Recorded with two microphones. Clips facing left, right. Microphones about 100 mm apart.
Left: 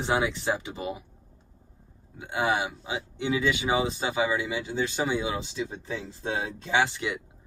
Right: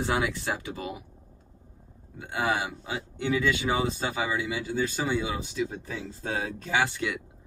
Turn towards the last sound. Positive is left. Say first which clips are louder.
# left 1 dB
turn(degrees=25)  # may be behind; listen again after turning